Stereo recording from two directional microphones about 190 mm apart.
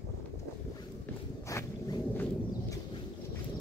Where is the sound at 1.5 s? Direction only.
20° left (ahead or behind).